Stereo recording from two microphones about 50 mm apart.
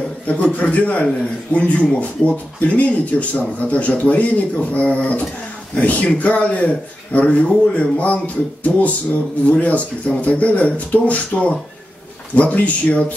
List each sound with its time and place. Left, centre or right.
0.3 s a man's voice: left